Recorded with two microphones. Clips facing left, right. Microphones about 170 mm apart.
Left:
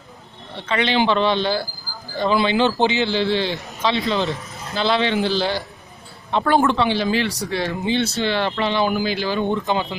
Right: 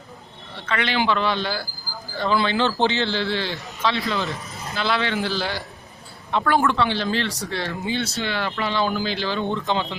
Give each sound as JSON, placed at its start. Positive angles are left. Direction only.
{"t": 0.7, "sound": "a man's voice", "side_deg": 20}
{"t": 8.7, "sound": "speech", "side_deg": 10}